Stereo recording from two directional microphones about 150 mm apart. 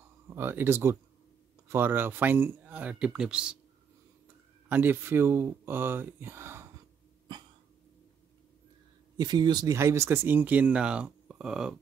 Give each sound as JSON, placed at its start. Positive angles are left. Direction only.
{"t": 0.3, "sound": "speech", "side_deg": -15}
{"t": 4.6, "sound": "speech", "side_deg": -10}
{"t": 9.1, "sound": "speech", "side_deg": -30}